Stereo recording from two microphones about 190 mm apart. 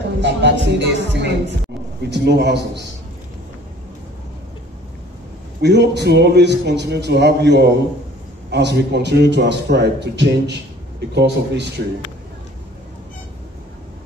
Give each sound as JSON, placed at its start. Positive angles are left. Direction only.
{"t": 0.2, "sound": "music", "side_deg": -65}
{"t": 2.0, "sound": "a man's voice", "side_deg": -65}
{"t": 5.6, "sound": "a man's voice", "side_deg": -65}